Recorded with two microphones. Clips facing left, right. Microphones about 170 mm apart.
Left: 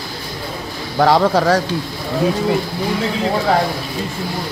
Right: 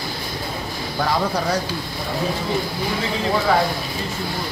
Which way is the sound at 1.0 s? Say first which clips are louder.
Left 9 dB; 80° left.